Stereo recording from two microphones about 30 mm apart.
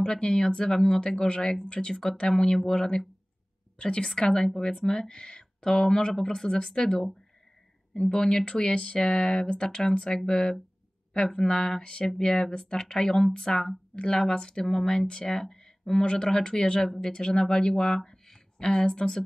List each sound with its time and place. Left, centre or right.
0.1 s speech: centre
2.2 s speech: centre
3.7 s speech: left; by 11.8 s centre
11.8 s speech: left
12.2 s speech: centre
13.0 s speech: centre
14.3 s speech: left
14.6 s speech: centre
16.0 s speech: left
17.2 s speech: centre